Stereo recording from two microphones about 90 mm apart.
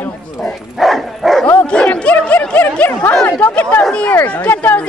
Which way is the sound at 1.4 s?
15° left (ahead or behind).